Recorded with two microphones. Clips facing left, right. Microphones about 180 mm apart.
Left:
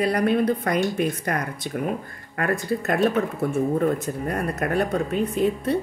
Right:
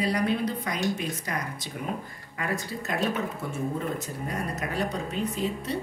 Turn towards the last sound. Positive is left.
turn(degrees=55)  # may be behind; listen again after turning